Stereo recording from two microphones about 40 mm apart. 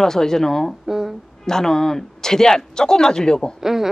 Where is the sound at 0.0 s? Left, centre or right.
Centre.